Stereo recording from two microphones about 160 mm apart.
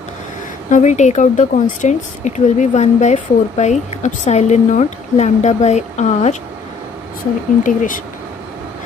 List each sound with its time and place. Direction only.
0.7 s speech: 50° left (ahead or behind)
7.6 s speech: 55° left (ahead or behind)